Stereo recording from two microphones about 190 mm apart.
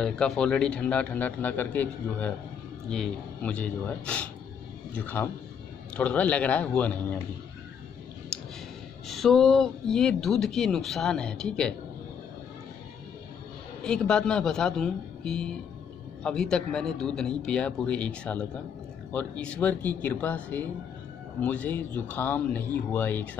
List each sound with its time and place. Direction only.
0.0 s a man's voice: 5° left (ahead or behind)
8.3 s a sound: 5° left (ahead or behind)
9.0 s speech: centre (ahead or behind)
13.8 s a man's voice: 5° left (ahead or behind)